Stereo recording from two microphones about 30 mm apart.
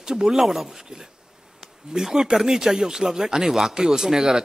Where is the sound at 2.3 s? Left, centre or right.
Centre.